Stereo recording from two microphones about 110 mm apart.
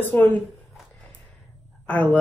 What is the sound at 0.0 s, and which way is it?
Speech, 20° left (ahead or behind).